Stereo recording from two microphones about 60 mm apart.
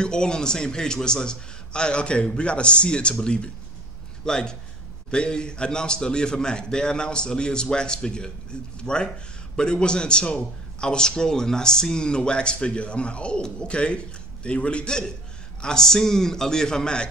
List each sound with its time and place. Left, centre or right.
0.0 s a man's voice: centre